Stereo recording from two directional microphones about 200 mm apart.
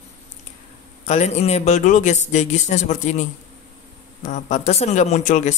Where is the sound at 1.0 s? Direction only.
35° left (ahead or behind).